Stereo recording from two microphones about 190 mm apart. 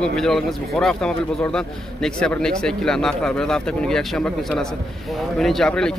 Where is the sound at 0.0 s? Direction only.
5° left (ahead or behind).